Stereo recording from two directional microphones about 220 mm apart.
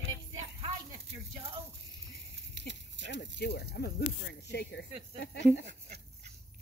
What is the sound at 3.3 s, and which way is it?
Speech, 45° left (ahead or behind).